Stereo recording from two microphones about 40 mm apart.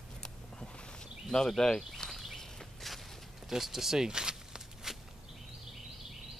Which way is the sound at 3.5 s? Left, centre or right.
Centre.